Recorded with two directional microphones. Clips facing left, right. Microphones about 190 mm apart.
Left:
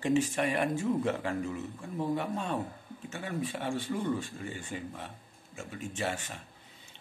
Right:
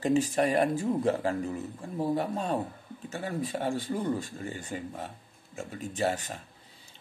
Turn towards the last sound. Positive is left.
turn(degrees=-40)  # may be behind; listen again after turning